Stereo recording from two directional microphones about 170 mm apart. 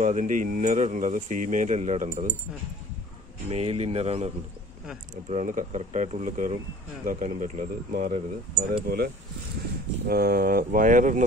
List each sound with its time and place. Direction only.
0.0 s speech: 45° right (ahead or behind)
3.4 s speech: 35° right (ahead or behind)
8.8 s speech: 65° right (ahead or behind); by 11.2 s 50° right (ahead or behind)